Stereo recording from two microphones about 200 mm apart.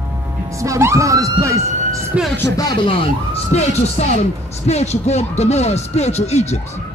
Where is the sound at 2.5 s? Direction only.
20° left (ahead or behind).